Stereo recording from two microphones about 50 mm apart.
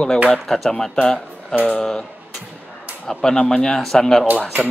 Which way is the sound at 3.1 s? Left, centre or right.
Centre.